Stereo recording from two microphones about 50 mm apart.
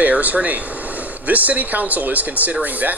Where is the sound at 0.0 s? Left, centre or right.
Right.